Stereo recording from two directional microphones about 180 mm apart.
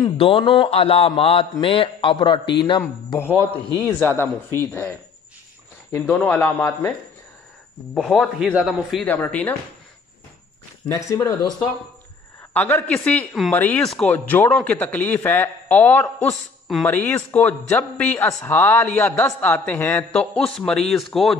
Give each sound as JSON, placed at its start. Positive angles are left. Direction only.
{"t": 0.0, "sound": "a man's voice", "side_deg": 30}
{"t": 3.8, "sound": "speech", "side_deg": 15}
{"t": 7.9, "sound": "a man's voice", "side_deg": 0}
{"t": 10.9, "sound": "speech", "side_deg": 15}
{"t": 12.5, "sound": "speech", "side_deg": 10}